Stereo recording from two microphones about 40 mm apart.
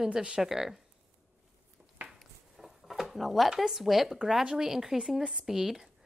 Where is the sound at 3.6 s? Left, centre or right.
Centre.